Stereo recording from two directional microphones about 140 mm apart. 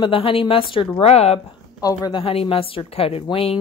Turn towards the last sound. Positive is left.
turn(degrees=45)  # may be behind; listen again after turning